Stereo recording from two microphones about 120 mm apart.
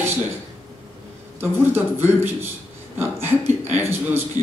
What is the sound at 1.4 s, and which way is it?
A man's voice, 20° right (ahead or behind).